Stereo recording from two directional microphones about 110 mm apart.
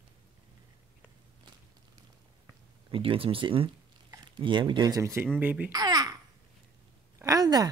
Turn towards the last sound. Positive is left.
turn(degrees=-35)  # may be behind; listen again after turning